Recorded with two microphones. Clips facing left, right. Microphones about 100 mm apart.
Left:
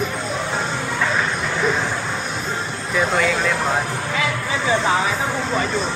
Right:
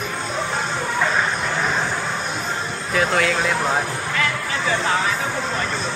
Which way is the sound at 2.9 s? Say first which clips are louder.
Even; centre (ahead or behind).